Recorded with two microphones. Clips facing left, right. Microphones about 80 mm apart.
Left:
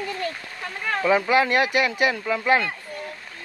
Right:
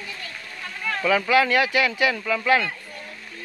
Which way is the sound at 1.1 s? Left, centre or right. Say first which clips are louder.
Even; left.